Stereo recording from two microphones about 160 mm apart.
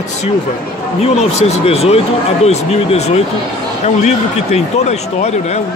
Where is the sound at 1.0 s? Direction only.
45° left (ahead or behind).